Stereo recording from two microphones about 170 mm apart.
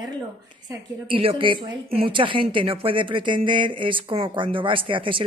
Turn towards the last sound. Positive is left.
turn(degrees=-30)  # may be behind; listen again after turning